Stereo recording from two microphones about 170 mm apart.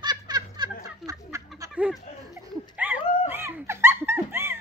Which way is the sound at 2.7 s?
10° right (ahead or behind).